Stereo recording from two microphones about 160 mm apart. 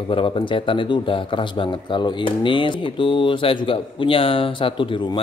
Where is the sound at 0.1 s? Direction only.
35° left (ahead or behind).